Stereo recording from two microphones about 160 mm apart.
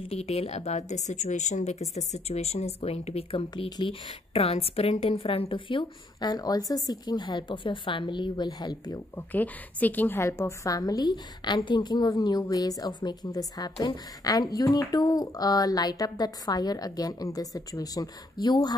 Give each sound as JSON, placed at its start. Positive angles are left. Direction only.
{"t": 0.1, "sound": "a woman's voice", "side_deg": 40}
{"t": 9.1, "sound": "a woman's voice", "side_deg": 10}